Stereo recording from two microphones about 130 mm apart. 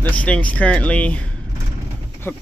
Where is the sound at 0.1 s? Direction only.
10° left (ahead or behind).